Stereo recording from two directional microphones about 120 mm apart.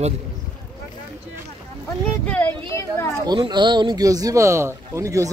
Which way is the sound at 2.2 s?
15° left (ahead or behind).